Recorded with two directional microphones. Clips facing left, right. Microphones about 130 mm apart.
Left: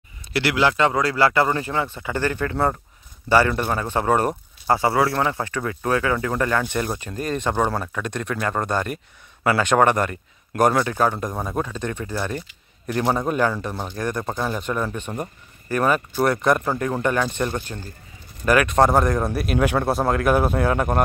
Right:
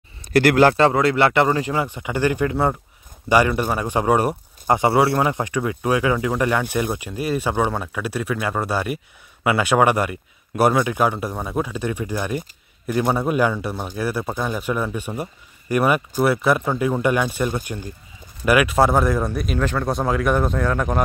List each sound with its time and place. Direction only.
0.3 s speech: 45° right (ahead or behind)
0.7 s speech: 30° right (ahead or behind)
2.5 s speech: centre (ahead or behind)
3.3 s speech: 15° right (ahead or behind); by 21.0 s 5° left (ahead or behind)